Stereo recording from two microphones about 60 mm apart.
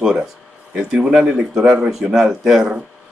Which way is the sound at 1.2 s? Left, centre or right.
Centre.